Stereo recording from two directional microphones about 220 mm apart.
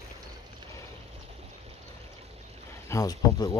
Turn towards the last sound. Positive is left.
turn(degrees=15)  # may be behind; listen again after turning